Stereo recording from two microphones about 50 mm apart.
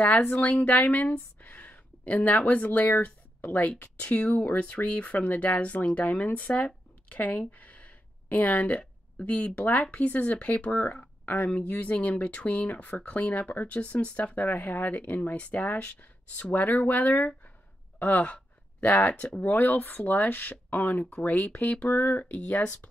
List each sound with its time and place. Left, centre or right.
0.0 s speech: left
6.5 s a sound: left
9.6 s speech: left
19.5 s speech: left
22.6 s speech: left